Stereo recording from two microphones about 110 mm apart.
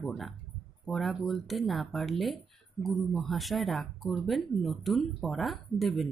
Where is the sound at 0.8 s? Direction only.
Centre (ahead or behind).